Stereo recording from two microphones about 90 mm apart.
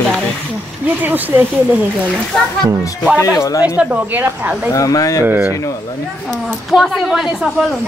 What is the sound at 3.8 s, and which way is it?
Speech, 20° right (ahead or behind).